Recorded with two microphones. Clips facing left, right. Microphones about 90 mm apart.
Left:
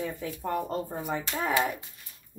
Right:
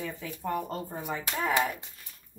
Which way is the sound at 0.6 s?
5° left (ahead or behind).